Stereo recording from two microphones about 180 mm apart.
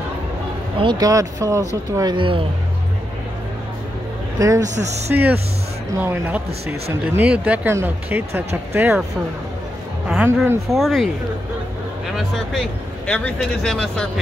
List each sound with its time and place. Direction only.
0.7 s speech: 25° right (ahead or behind)
4.4 s speech: 20° right (ahead or behind)
4.6 s speech: 40° right (ahead or behind)
5.9 s speech: 10° right (ahead or behind)
10.0 s speech: 10° right (ahead or behind)
10.7 s speech: centre (ahead or behind)
13.0 s speech: 5° left (ahead or behind)